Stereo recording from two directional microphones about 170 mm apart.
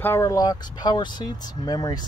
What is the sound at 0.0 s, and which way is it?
Speech, 15° left (ahead or behind).